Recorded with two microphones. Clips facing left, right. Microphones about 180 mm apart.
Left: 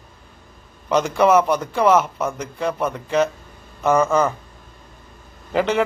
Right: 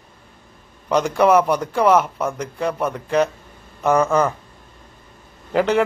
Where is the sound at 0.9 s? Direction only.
10° right (ahead or behind).